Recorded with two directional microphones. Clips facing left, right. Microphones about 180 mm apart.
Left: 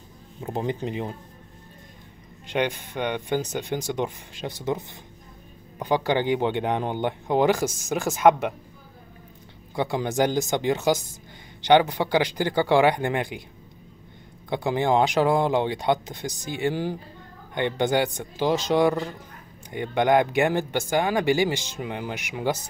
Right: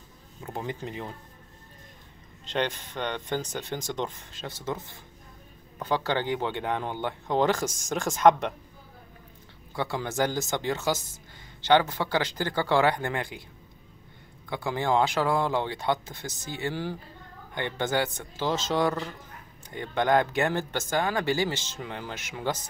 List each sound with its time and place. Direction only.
0.4 s speech: 25° left (ahead or behind)
2.4 s speech: 10° left (ahead or behind)
9.8 s speech: 15° left (ahead or behind)
14.5 s speech: 20° left (ahead or behind)